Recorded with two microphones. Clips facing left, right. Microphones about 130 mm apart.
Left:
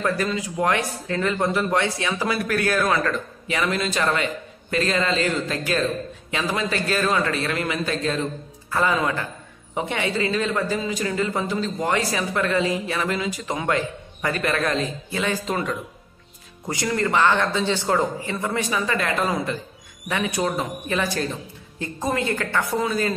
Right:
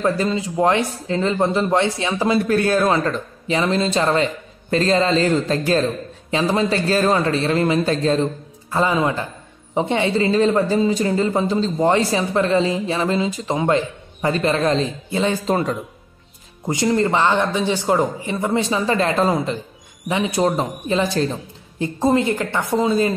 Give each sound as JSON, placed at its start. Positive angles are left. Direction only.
{"t": 0.0, "sound": "a man's voice", "side_deg": -25}
{"t": 16.6, "sound": "speech", "side_deg": -25}